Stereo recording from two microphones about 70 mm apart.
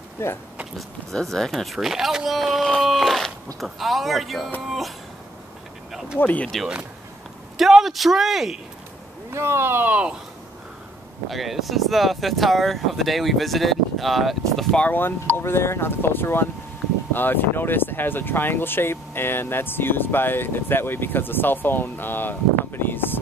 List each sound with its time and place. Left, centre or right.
0.2 s speech: left
1.1 s speech: centre
5.9 s a sound: centre
6.1 s speech: left
7.5 s speech: centre
9.3 s speech: right
9.8 s speech: centre
11.2 s speech: centre
14.8 s speech: left